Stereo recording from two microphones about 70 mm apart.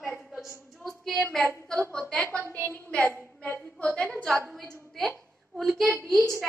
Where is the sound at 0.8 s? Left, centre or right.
Centre.